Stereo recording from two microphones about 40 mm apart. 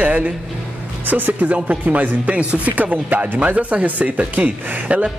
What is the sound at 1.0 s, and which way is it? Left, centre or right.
Speech, right.